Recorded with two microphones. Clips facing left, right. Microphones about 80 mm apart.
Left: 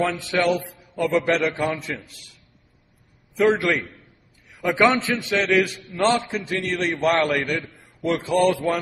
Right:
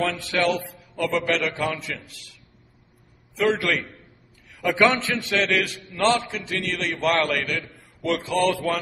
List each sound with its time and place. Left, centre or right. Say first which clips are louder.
0.0 s a man's voice: left 2 dB; centre
3.7 s a man's voice: left 2 dB; left
4.5 s a sound: left 1 dB; centre
5.0 s a man's voice: left 2 dB; centre
5.3 s a man's voice: left 3 dB; left
7.4 s a man's voice: left 3 dB; left